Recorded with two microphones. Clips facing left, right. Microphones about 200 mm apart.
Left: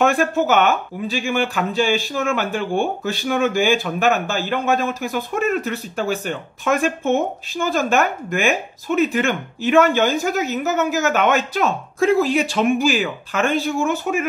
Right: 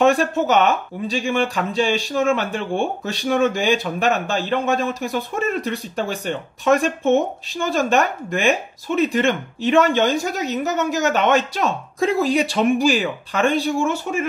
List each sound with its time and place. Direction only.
0.1 s speech: 5° left (ahead or behind)
2.1 s speech: 30° right (ahead or behind)
2.5 s speech: centre (ahead or behind)
7.6 s speech: centre (ahead or behind)